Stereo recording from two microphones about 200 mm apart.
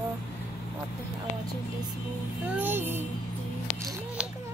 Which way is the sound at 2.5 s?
10° right (ahead or behind).